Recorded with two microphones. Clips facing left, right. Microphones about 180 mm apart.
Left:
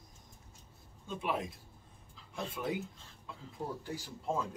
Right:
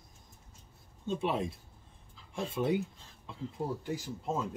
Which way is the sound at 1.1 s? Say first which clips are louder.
Right 4 dB; 25° right (ahead or behind).